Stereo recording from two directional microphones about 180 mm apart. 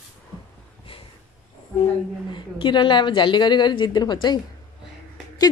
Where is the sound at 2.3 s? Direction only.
25° left (ahead or behind).